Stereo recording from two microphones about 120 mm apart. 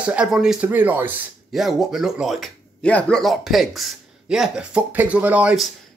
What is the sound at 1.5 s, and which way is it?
Speech, centre (ahead or behind).